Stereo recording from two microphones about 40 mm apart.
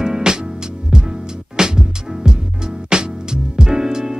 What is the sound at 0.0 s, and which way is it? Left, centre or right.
Music, centre.